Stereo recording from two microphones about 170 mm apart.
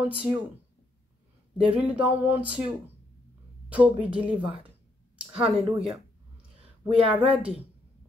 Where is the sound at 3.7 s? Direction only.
10° right (ahead or behind).